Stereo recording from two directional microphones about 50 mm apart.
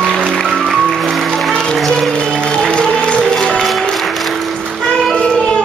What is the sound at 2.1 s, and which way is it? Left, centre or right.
Music, centre.